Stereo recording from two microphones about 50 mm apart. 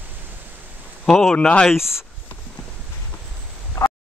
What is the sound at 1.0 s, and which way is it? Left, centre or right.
Speech, centre.